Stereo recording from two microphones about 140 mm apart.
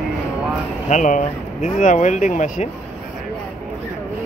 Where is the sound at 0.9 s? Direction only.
60° left (ahead or behind).